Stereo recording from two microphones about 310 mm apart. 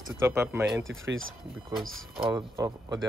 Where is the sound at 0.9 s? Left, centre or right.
Right.